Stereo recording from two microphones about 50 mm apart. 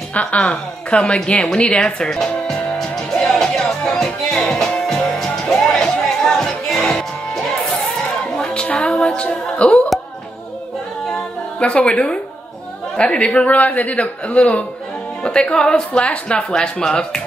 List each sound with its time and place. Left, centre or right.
0.1 s speech: left
1.8 s music: centre
8.6 s music: centre
9.0 s speech: left
11.6 s speech: left